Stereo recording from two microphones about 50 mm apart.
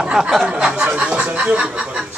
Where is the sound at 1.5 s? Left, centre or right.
Right.